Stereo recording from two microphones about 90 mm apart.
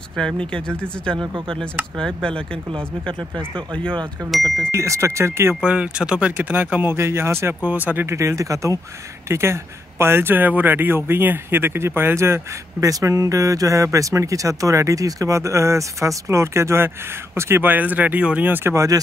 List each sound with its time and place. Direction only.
0.1 s speech: centre (ahead or behind)
1.1 s speech: 55° right (ahead or behind)
2.0 s speech: 10° left (ahead or behind)
3.2 s speech: 55° right (ahead or behind)
4.3 s speech: centre (ahead or behind)
4.7 s speech: 35° right (ahead or behind)
5.6 s speech: 10° right (ahead or behind); by 12.4 s 25° right (ahead or behind)
12.8 s speech: 40° right (ahead or behind)